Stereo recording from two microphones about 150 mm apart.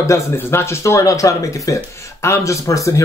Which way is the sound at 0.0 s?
20° left (ahead or behind).